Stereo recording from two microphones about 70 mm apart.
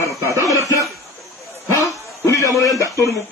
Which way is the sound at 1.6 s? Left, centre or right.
Left.